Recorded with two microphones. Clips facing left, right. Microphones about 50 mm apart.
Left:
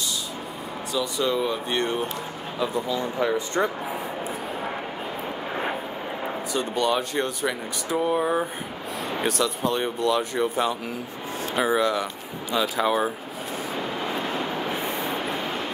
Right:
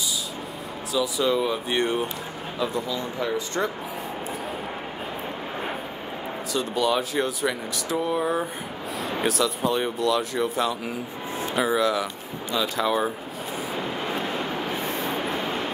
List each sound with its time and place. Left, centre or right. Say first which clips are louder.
0.9 s speech: right 2 dB; centre
1.8 s speech: right 2 dB; centre
2.7 s speech: left 2 dB; left
6.6 s speech: even; centre
7.9 s speech: left 2 dB; centre
9.0 s speech: right 1 dB; centre
14.8 s vehicle: even; centre
15.4 s vehicle: right 1 dB; centre